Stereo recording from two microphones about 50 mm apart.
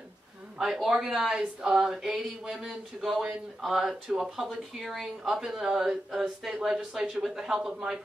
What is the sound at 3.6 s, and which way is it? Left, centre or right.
A woman's voice, centre.